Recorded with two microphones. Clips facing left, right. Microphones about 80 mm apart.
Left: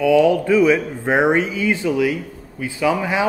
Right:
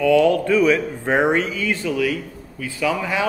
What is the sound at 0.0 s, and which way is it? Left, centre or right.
Speech, centre.